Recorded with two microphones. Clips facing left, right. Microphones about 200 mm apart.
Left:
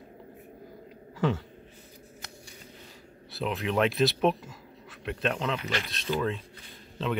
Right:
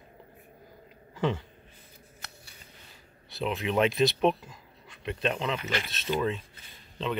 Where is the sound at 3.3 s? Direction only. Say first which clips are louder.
Even; centre (ahead or behind).